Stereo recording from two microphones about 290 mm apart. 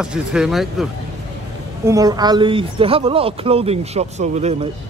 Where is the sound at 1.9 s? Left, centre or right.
Centre.